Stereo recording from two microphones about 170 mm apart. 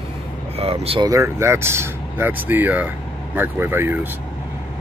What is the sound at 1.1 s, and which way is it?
Speech, 15° right (ahead or behind).